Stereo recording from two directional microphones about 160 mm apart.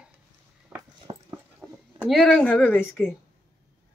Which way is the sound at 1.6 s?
Centre (ahead or behind).